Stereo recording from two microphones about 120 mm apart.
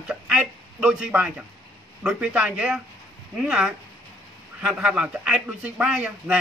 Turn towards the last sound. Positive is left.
turn(degrees=-10)  # may be behind; listen again after turning